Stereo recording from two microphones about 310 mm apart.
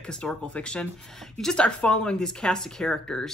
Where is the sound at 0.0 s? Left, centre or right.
Centre.